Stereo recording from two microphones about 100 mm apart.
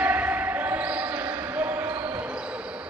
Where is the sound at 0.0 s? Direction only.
15° right (ahead or behind).